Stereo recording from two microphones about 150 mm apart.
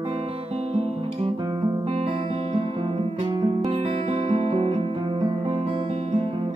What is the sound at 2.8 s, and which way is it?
Guitar, 35° right (ahead or behind).